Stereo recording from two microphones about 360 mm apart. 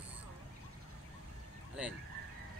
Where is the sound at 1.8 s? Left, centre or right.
Centre.